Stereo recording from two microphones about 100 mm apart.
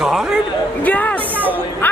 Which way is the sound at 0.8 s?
15° left (ahead or behind).